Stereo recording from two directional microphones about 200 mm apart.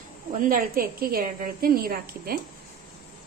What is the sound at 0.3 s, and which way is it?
A woman's voice, 40° right (ahead or behind).